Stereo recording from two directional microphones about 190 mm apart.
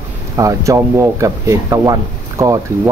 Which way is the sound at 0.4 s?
15° right (ahead or behind).